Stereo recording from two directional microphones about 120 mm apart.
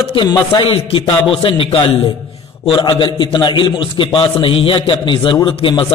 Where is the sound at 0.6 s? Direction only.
50° left (ahead or behind).